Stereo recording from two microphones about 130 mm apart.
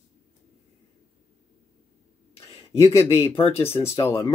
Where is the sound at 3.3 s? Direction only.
45° left (ahead or behind).